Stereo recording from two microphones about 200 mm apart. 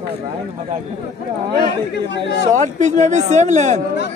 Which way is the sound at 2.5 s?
35° right (ahead or behind).